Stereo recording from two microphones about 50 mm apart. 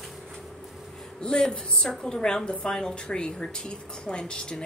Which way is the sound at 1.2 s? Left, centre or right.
Centre.